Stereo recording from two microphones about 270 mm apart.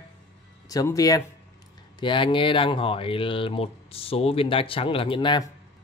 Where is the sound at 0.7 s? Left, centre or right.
Centre.